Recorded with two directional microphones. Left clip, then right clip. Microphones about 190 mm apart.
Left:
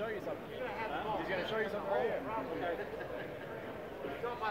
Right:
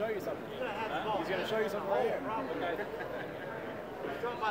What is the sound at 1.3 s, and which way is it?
Speech, 15° left (ahead or behind).